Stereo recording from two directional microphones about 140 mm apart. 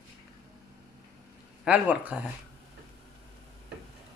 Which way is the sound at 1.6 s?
10° right (ahead or behind).